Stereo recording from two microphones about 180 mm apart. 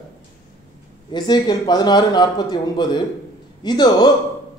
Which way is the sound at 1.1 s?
25° left (ahead or behind).